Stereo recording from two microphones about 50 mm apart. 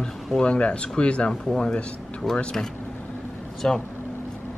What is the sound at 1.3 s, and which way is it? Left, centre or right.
Speech, centre.